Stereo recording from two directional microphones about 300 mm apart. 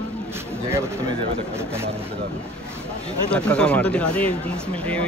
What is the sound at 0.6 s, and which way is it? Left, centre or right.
Speech, centre.